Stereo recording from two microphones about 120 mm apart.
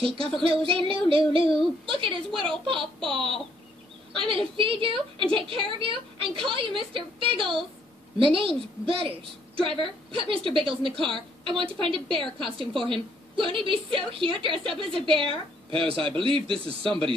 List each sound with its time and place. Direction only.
0.4 s a woman's voice: 50° right (ahead or behind)